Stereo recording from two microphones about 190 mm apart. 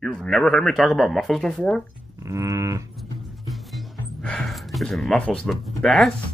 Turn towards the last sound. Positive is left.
turn(degrees=0)  # may be behind; listen again after turning